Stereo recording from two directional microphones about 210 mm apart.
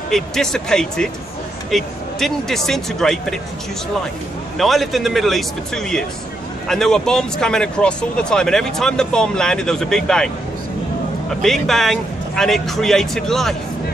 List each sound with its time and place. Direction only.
0.1 s speech: centre (ahead or behind)
4.6 s speech: centre (ahead or behind)
11.4 s speech: centre (ahead or behind)